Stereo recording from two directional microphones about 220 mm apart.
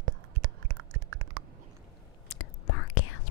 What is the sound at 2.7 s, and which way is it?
Whispering, 75° left (ahead or behind).